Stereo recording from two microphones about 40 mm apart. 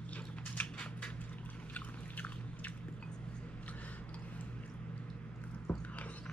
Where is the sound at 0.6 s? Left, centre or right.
Left.